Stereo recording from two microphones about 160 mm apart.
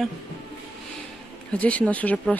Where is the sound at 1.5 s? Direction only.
10° left (ahead or behind).